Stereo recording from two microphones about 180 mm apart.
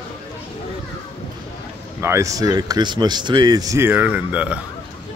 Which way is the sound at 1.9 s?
15° right (ahead or behind).